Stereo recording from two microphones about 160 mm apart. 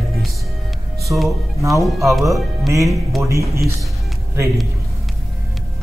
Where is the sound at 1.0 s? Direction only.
Centre (ahead or behind).